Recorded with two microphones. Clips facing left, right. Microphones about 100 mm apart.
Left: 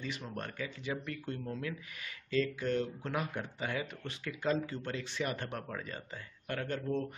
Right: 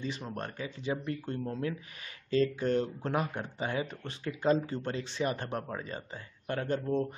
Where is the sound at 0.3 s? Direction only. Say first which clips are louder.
Right 2 dB; 30° right (ahead or behind).